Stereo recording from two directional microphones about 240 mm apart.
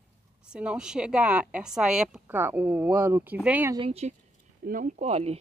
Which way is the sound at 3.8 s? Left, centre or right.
Right.